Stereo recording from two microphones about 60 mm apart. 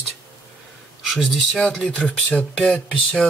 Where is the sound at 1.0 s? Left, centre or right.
Centre.